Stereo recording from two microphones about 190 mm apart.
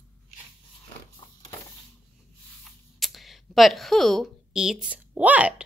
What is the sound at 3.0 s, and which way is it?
Speech, centre (ahead or behind).